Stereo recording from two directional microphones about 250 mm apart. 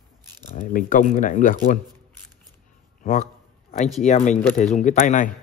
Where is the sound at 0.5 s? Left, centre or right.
Left.